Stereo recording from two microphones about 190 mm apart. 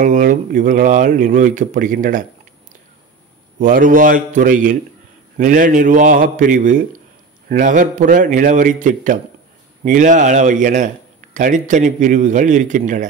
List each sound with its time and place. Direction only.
0.0 s speech: 45° right (ahead or behind)
3.5 s a man's voice: 45° right (ahead or behind)